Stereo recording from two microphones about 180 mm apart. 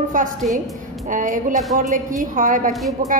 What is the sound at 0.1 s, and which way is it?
A woman's voice, 45° right (ahead or behind).